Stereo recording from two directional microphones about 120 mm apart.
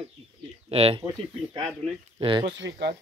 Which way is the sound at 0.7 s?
55° right (ahead or behind).